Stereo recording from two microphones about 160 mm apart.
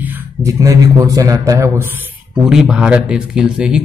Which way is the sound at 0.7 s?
20° right (ahead or behind).